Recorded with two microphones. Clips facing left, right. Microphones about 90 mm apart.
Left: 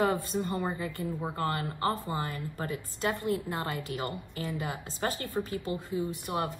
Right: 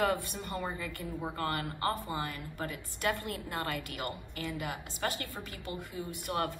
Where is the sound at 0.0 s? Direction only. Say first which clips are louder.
Left 3 dB; 20° left (ahead or behind).